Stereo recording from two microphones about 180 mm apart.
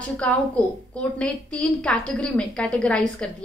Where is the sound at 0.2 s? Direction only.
5° left (ahead or behind).